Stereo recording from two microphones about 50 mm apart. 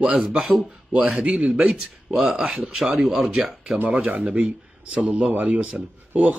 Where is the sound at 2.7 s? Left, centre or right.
Centre.